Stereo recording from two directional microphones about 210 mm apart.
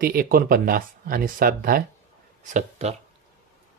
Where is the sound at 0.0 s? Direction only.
45° right (ahead or behind).